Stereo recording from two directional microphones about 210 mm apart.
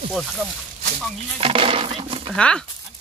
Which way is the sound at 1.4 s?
25° right (ahead or behind).